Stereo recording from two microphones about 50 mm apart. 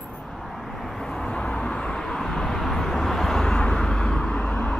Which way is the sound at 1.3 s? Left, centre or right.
Centre.